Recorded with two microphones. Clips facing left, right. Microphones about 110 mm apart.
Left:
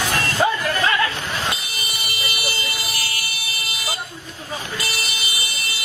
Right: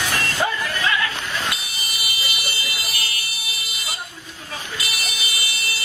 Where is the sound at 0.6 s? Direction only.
45° left (ahead or behind).